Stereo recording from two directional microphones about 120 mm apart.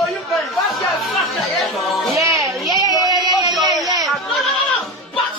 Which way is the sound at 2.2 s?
25° right (ahead or behind).